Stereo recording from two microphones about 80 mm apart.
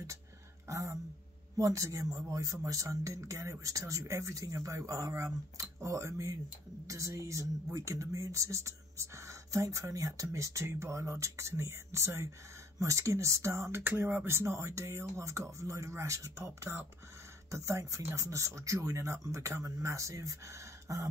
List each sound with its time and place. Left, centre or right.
0.7 s speech: right